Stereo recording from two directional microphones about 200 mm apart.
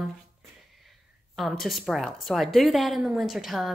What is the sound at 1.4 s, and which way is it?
A woman's voice, centre (ahead or behind).